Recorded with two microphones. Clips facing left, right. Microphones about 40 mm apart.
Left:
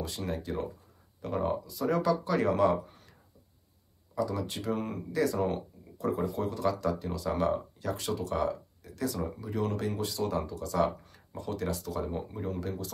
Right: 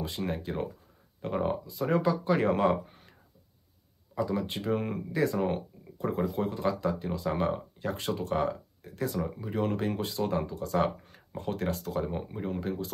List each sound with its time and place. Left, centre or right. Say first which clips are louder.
0.0 s speech: right 2 dB; right
12.2 s speech: right 1 dB; right